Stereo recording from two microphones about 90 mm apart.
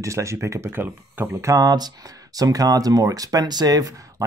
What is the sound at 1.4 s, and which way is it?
Speech, 45° right (ahead or behind).